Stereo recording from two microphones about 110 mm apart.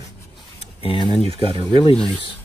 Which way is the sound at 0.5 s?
55° left (ahead or behind).